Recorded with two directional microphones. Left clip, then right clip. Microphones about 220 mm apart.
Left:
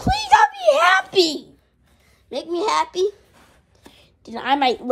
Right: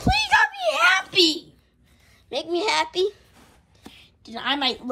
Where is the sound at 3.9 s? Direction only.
20° left (ahead or behind).